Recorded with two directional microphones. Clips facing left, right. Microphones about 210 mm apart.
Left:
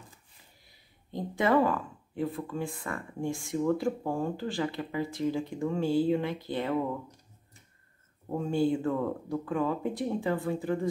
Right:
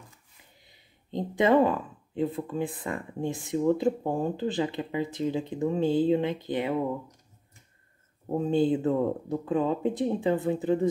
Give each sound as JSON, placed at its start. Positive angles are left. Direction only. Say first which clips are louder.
{"t": 0.7, "sound": "speech", "louder": "right 5 dB", "side_deg": -20}
{"t": 8.3, "sound": "speech", "louder": "right 3 dB", "side_deg": -20}